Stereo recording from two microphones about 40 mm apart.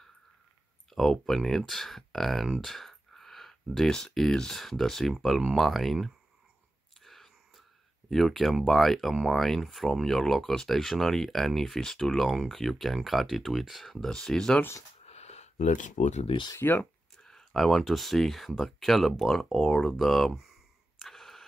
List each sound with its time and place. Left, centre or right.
0.9 s speech: centre
2.6 s a sound: centre
3.9 s speech: centre
7.0 s whispering: centre
8.1 s speech: centre
9.8 s speech: centre
14.1 s speech: centre
16.5 s speech: left
17.2 s speech: centre
21.0 s a sound: centre